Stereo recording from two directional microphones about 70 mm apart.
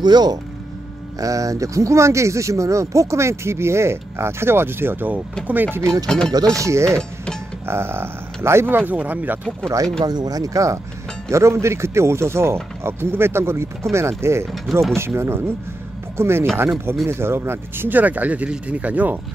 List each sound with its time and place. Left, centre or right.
0.0 s speech: right
1.2 s speech: right
5.8 s speech: right
6.0 s speech: centre
6.5 s speech: right
10.0 s speech: right
14.4 s speech: centre
15.0 s speech: right